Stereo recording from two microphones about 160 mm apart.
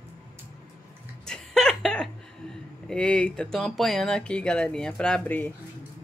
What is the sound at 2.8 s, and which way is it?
Speech, 5° left (ahead or behind).